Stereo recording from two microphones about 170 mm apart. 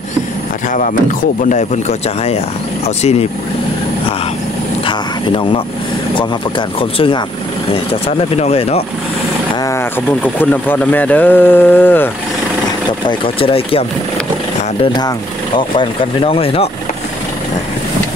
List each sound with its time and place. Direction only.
1.4 s speech: 45° left (ahead or behind)
4.8 s speech: 30° left (ahead or behind)
6.8 s speech: 30° left (ahead or behind)
10.2 s speech: 10° left (ahead or behind)
13.2 s speech: 30° left (ahead or behind)